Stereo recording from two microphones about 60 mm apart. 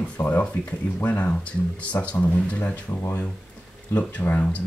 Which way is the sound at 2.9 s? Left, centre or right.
Left.